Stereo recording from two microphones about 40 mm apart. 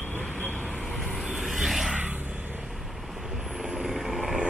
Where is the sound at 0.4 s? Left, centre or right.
Left.